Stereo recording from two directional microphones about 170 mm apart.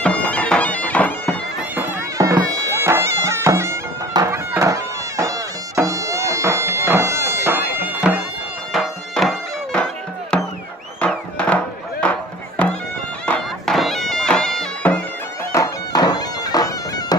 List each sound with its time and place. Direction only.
0.0 s bagpipes: 5° left (ahead or behind)
1.8 s bagpipes: 20° right (ahead or behind)
8.7 s music: centre (ahead or behind)
15.5 s bagpipes: 20° left (ahead or behind)